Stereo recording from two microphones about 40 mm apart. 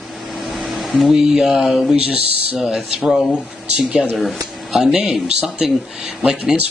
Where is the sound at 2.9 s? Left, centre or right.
Centre.